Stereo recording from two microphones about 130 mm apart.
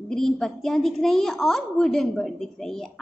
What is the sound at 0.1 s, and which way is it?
A woman's voice, 5° left (ahead or behind).